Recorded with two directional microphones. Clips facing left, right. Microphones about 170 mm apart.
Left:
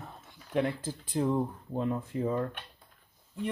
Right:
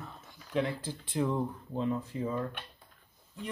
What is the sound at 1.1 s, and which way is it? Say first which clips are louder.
Speech: left 2 dB; 40° left (ahead or behind).